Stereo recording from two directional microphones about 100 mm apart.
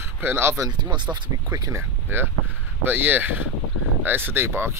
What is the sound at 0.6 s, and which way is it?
Speech, 45° right (ahead or behind).